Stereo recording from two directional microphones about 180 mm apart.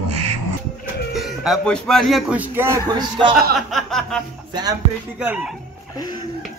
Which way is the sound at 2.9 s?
25° right (ahead or behind).